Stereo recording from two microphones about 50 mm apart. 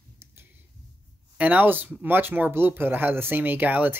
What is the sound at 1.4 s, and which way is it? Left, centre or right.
Speech, right.